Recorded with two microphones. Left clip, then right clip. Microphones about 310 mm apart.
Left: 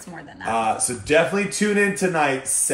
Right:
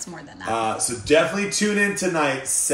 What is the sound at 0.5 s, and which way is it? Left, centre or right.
Speech, left.